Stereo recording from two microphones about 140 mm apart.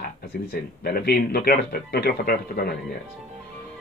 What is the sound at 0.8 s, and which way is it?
Speech, 90° left.